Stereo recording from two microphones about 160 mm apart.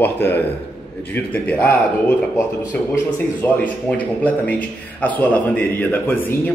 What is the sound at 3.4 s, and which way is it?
A man's voice, 15° left (ahead or behind).